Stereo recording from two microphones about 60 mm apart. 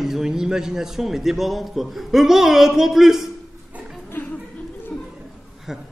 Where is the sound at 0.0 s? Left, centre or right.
Centre.